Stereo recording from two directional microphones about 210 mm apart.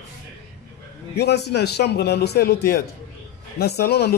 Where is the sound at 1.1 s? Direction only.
50° left (ahead or behind).